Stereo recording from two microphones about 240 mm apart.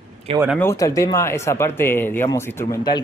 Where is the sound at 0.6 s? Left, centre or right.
Centre.